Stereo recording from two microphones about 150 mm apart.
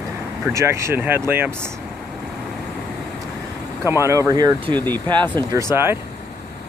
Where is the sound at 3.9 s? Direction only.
20° right (ahead or behind).